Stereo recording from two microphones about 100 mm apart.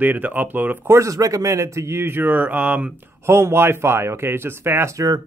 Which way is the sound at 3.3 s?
25° right (ahead or behind).